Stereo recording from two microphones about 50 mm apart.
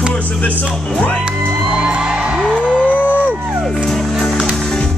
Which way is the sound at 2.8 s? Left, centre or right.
Left.